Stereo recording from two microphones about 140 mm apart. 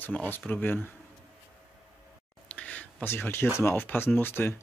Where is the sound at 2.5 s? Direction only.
10° left (ahead or behind).